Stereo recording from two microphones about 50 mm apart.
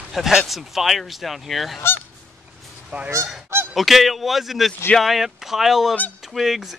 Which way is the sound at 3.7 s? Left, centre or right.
Centre.